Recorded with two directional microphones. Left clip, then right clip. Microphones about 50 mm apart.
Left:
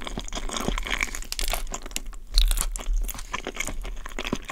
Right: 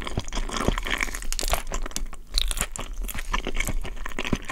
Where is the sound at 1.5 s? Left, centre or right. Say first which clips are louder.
Right 3 dB; right.